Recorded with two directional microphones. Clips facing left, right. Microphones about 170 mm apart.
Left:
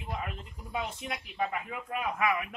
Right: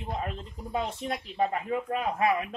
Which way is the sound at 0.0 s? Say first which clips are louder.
Right 4 dB; 30° right (ahead or behind).